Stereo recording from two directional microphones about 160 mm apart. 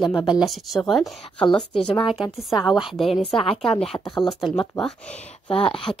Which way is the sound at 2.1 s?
5° right (ahead or behind).